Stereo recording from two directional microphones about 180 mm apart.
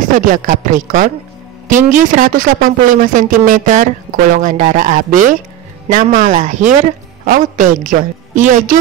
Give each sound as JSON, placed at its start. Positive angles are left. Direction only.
{"t": 0.1, "sound": "speech", "side_deg": -45}